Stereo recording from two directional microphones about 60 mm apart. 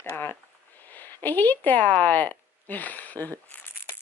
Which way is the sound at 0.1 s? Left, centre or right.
Left.